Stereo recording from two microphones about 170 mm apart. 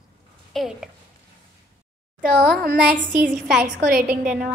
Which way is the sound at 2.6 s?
60° right (ahead or behind).